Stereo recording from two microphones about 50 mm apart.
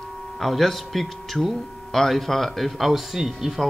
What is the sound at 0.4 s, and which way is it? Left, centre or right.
Speech, centre.